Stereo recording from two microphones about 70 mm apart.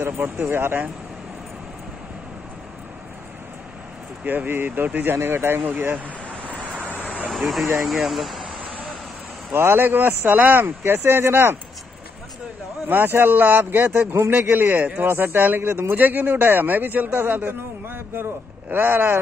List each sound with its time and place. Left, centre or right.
0.5 s speech: right
4.2 s a man's voice: right
5.9 s a sound: right
7.2 s speech: centre
9.5 s speech: right
12.8 s a man's voice: right